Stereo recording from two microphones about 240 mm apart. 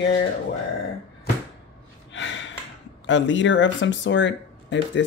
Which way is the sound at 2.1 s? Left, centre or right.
Left.